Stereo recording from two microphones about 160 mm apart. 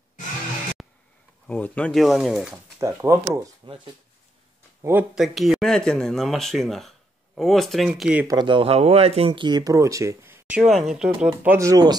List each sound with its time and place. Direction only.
1.5 s speech: 10° left (ahead or behind)
2.5 s speech: 20° right (ahead or behind)
5.1 s speech: centre (ahead or behind)
8.3 s speech: 30° right (ahead or behind); by 11.1 s 5° right (ahead or behind)
11.2 s speech: 15° right (ahead or behind)